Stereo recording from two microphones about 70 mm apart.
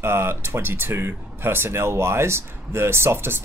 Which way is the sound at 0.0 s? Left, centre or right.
Right.